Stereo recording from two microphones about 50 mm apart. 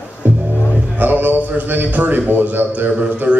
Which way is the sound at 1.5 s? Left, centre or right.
Right.